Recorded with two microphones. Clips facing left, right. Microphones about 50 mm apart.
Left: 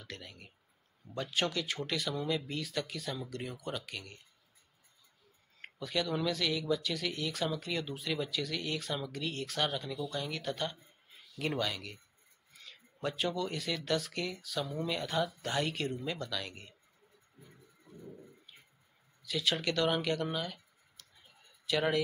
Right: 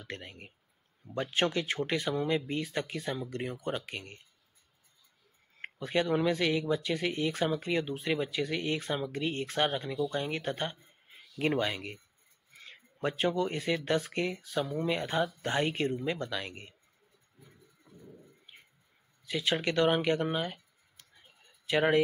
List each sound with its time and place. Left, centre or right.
0.0 s speech: right
5.6 s speech: right
18.5 s a sound: right
19.2 s speech: right